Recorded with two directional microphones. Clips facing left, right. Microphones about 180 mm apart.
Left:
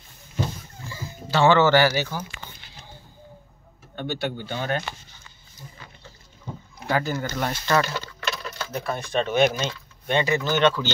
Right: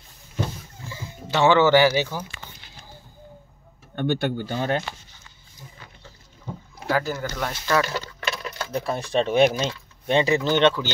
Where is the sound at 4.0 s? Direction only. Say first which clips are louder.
Right 5 dB; 50° right (ahead or behind).